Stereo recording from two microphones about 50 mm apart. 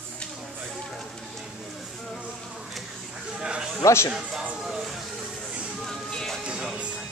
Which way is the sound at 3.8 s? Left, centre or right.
Left.